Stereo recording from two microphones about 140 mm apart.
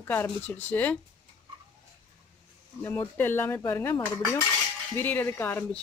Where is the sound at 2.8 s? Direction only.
15° left (ahead or behind).